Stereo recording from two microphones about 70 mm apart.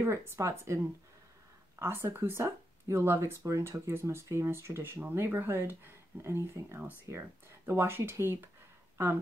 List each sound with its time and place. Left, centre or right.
0.0 s speech: right
1.8 s speech: right